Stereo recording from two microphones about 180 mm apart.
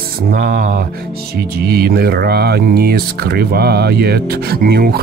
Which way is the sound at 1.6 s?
60° right (ahead or behind).